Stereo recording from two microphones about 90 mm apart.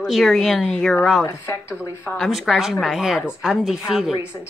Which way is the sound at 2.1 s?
Centre (ahead or behind).